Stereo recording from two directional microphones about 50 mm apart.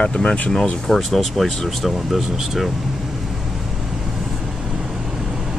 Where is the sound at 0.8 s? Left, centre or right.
Centre.